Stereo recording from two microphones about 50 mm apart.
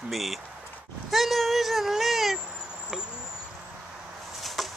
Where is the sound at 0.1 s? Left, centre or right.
Centre.